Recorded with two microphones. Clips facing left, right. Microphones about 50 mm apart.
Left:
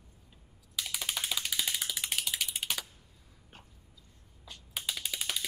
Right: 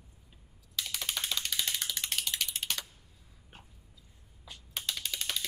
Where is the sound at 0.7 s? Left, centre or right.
Centre.